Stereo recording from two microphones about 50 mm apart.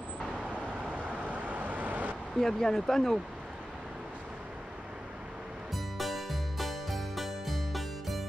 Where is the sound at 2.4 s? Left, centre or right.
Centre.